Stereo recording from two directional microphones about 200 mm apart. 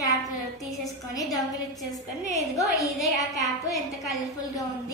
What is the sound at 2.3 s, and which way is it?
Speech, 15° left (ahead or behind).